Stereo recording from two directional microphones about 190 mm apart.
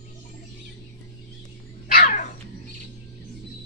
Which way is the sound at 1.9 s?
45° left (ahead or behind).